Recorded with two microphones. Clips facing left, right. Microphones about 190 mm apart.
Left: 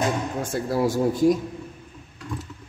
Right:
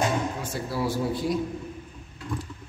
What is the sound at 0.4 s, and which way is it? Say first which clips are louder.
A woman's voice: left 6 dB; 50° left (ahead or behind).